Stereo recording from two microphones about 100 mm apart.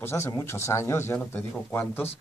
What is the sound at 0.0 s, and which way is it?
Speech, 25° left (ahead or behind).